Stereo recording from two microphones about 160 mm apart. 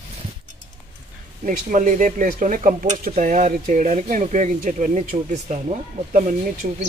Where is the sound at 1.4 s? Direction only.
55° right (ahead or behind).